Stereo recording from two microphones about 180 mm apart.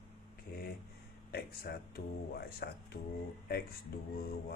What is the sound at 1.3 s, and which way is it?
A man's voice, 55° left (ahead or behind).